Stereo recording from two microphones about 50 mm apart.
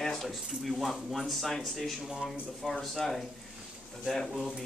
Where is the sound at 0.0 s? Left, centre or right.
Centre.